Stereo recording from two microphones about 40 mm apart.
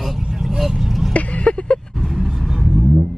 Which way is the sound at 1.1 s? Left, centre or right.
Left.